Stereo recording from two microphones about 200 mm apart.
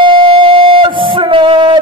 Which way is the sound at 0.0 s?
25° right (ahead or behind).